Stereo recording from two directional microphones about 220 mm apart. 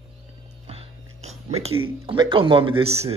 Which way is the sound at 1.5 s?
25° right (ahead or behind).